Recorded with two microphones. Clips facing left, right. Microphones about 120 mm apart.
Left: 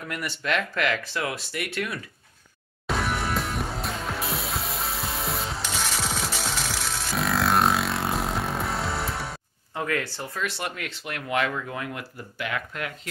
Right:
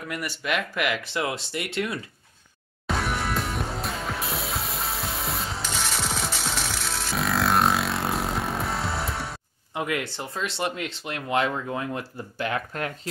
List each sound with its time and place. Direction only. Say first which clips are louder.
0.1 s speech: left 1 dB; 5° right (ahead or behind); by 2.0 s 25° right (ahead or behind)
3.2 s music: even; centre (ahead or behind)
9.8 s speech: even; 15° right (ahead or behind); by 13.1 s 35° right (ahead or behind)